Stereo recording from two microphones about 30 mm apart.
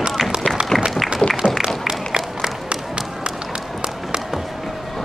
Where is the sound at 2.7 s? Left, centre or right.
Right.